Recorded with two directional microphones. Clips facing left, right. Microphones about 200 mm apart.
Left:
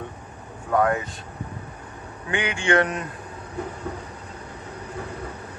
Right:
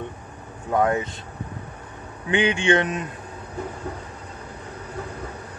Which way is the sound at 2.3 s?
20° right (ahead or behind).